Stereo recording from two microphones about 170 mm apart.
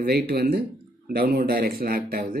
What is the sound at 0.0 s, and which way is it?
A man's voice, 65° right (ahead or behind).